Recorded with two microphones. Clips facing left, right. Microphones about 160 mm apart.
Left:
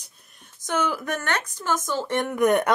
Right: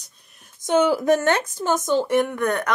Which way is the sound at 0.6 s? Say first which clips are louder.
Right 8 dB; 30° right (ahead or behind).